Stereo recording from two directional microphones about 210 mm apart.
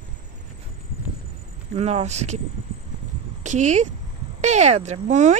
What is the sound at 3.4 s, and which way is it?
Speech, 35° right (ahead or behind).